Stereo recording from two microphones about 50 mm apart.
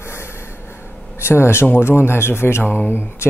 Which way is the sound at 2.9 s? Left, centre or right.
Left.